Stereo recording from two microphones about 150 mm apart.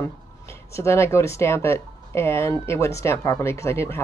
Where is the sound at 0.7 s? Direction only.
15° left (ahead or behind).